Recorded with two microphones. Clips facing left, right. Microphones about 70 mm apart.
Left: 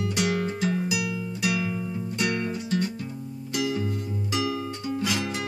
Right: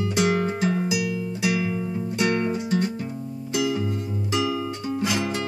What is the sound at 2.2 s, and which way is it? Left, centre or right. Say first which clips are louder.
Music: right 5 dB; right.